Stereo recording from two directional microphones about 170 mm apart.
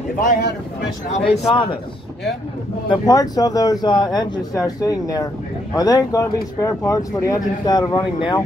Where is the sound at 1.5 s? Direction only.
30° left (ahead or behind).